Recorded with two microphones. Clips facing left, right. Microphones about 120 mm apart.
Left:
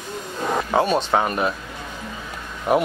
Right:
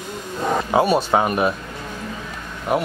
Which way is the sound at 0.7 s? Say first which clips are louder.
Right 2 dB; 10° right (ahead or behind).